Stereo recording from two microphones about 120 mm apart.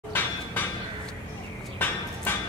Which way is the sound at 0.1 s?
15° left (ahead or behind).